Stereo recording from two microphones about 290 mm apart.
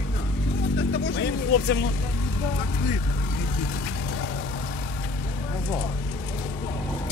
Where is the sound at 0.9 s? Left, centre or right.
Left.